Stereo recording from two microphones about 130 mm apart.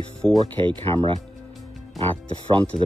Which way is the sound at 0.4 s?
40° right (ahead or behind).